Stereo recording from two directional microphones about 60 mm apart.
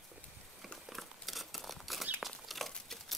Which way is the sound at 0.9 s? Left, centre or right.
Centre.